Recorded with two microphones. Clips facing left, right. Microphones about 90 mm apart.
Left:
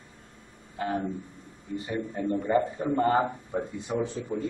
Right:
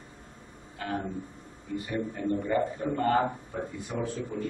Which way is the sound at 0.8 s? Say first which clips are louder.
Left 3 dB; 25° left (ahead or behind).